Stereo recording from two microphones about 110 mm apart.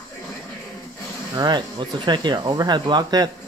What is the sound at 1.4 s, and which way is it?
Speech, 40° right (ahead or behind).